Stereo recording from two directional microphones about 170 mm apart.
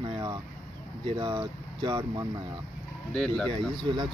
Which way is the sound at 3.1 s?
5° left (ahead or behind).